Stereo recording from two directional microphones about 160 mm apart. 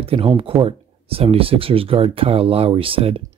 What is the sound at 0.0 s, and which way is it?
Speech, 35° right (ahead or behind).